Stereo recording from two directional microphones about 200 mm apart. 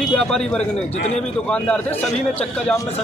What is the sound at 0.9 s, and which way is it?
Speech, 30° left (ahead or behind).